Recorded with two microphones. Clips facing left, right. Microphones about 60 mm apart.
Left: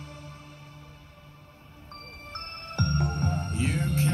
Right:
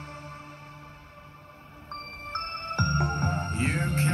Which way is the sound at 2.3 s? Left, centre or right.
Right.